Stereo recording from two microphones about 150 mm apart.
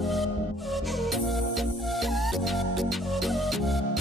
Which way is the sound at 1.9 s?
Centre (ahead or behind).